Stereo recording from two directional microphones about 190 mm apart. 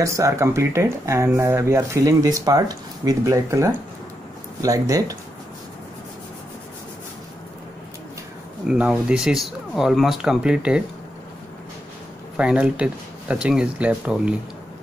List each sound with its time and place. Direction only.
0.0 s speech: 15° right (ahead or behind)
8.6 s speech: 5° right (ahead or behind)
12.4 s speech: 5° right (ahead or behind)